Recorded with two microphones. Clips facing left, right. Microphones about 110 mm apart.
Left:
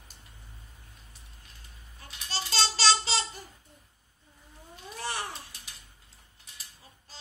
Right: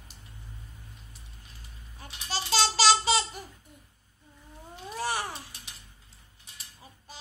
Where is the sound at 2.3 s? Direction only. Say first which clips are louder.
Right 3 dB; 15° right (ahead or behind).